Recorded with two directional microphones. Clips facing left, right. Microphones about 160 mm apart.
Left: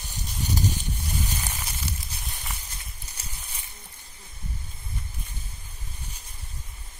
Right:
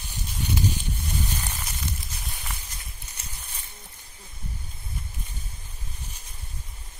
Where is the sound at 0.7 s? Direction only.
10° left (ahead or behind).